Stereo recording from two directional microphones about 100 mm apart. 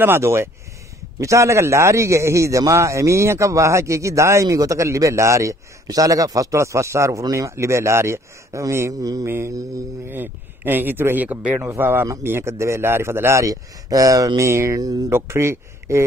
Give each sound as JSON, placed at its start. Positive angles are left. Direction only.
{"t": 0.0, "sound": "a man's voice", "side_deg": -25}
{"t": 10.0, "sound": "a man's voice", "side_deg": -20}
{"t": 15.1, "sound": "speech", "side_deg": -25}